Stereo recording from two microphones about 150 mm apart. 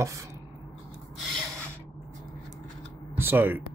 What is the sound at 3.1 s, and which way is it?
Speech, 15° right (ahead or behind).